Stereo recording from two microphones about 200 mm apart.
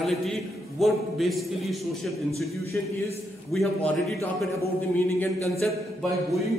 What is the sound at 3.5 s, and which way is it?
Speech, 5° left (ahead or behind).